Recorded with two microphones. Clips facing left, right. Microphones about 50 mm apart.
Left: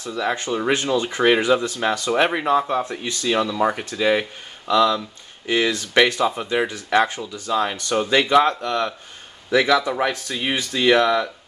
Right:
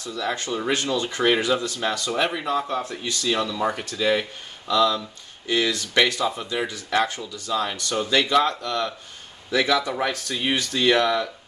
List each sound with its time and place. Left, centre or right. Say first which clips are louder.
0.0 s speech: left 4 dB; left